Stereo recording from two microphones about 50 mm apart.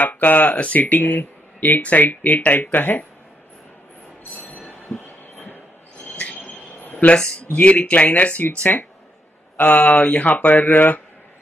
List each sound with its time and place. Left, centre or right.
0.0 s speech: left
4.2 s train: left
4.9 s heart murmur: left
6.1 s a sound: left
6.8 s a sound: left
7.5 s speech: left
9.6 s speech: left